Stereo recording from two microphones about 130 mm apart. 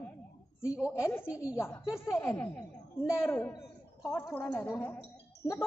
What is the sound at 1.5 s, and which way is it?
A woman's voice, 20° left (ahead or behind).